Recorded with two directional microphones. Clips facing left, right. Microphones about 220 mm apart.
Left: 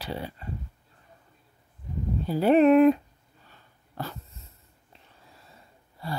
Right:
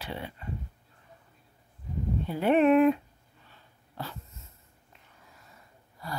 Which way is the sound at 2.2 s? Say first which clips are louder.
Left 4 dB; 35° left (ahead or behind).